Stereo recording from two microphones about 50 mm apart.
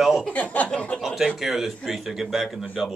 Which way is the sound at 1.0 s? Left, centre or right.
Centre.